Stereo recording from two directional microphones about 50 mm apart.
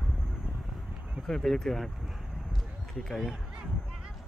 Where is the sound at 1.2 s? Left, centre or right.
Centre.